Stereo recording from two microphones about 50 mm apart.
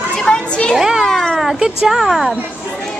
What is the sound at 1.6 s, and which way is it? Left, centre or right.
Speech, centre.